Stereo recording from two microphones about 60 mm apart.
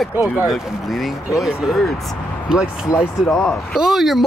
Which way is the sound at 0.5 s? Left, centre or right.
Centre.